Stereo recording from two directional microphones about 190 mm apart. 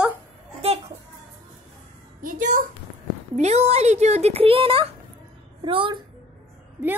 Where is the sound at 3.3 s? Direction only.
35° right (ahead or behind).